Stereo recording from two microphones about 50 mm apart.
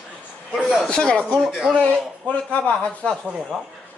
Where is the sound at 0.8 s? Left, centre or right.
Centre.